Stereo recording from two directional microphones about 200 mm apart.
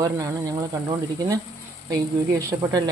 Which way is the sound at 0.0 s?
15° right (ahead or behind).